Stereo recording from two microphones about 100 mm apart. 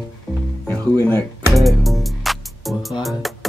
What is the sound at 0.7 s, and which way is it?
Speech, 20° left (ahead or behind).